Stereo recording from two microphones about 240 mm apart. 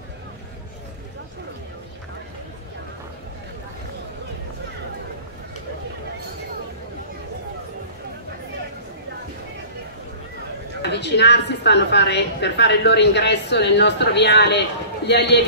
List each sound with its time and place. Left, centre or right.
10.8 s a woman's voice: left